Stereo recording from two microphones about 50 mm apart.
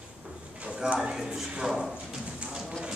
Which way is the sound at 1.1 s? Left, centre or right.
Centre.